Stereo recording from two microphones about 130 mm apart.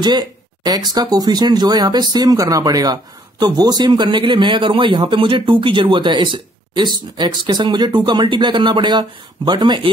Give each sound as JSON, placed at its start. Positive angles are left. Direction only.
{"t": 0.0, "sound": "speech", "side_deg": -30}